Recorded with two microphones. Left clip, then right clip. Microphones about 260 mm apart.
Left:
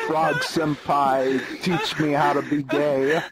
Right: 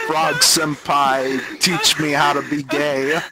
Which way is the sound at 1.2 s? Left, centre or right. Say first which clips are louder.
Right 1 dB; centre.